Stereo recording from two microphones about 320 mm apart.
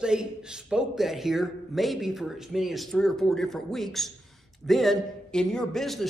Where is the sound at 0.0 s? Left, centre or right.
Centre.